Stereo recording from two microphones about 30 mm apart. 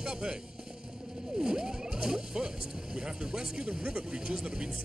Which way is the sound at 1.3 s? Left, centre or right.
Right.